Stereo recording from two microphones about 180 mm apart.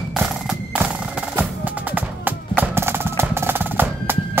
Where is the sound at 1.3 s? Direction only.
10° right (ahead or behind).